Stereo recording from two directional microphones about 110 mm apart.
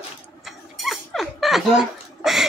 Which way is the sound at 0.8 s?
Centre (ahead or behind).